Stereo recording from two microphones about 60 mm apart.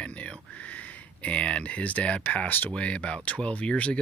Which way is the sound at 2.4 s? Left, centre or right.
Left.